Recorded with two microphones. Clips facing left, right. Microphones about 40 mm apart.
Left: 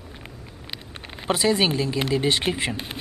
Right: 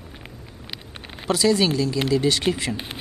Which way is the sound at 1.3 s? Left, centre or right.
Left.